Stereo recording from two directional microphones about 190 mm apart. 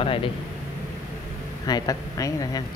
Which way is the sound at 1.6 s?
20° left (ahead or behind).